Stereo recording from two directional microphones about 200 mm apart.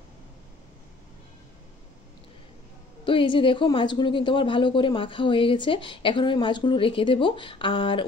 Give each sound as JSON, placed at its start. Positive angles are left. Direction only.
{"t": 3.1, "sound": "speech", "side_deg": 25}